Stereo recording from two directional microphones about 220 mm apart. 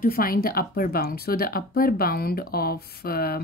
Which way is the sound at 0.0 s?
40° left (ahead or behind).